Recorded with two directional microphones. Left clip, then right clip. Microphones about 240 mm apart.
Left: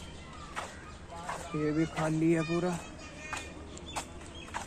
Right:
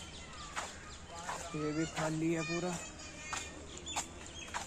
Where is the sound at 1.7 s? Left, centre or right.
Centre.